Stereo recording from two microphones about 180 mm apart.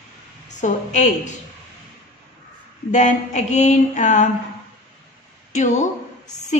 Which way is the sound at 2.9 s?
40° left (ahead or behind).